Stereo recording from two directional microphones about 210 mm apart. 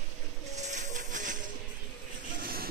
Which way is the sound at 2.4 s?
45° right (ahead or behind).